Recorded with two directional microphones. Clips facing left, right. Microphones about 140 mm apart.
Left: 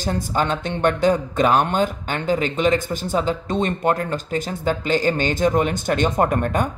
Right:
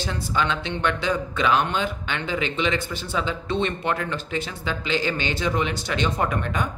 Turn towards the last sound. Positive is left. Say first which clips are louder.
# left 6 dB
turn(degrees=45)  # may be behind; listen again after turning